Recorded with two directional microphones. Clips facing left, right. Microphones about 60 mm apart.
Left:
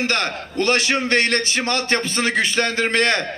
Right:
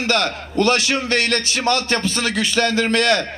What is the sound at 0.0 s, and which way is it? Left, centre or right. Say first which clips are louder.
A man's voice: right 2 dB; left.